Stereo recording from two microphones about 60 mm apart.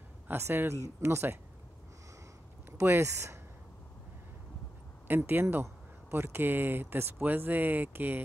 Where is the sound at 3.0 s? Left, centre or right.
Right.